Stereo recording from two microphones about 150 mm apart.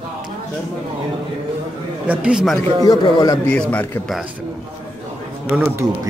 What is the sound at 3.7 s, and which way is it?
Speech, 10° left (ahead or behind).